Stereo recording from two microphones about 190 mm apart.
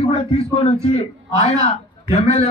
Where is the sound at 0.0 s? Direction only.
30° left (ahead or behind).